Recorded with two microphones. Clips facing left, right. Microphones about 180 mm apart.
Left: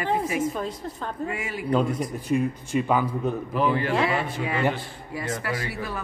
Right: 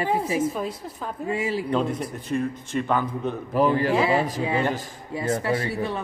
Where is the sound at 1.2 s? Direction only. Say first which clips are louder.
Right 9 dB; 30° right (ahead or behind).